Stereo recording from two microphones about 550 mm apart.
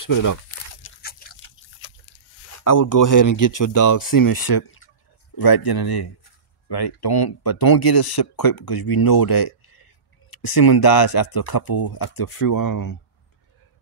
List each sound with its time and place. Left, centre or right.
0.0 s speech: left
0.8 s pig: centre
2.6 s speech: left
4.6 s drip: left
5.4 s speech: left